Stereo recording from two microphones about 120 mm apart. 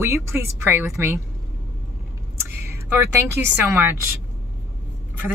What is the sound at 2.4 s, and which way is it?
Speech, 20° right (ahead or behind).